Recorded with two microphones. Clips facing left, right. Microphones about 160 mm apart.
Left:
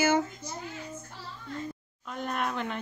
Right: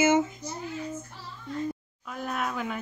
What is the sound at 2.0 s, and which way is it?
Speech, 5° right (ahead or behind).